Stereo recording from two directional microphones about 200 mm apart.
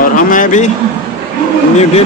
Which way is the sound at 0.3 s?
40° left (ahead or behind).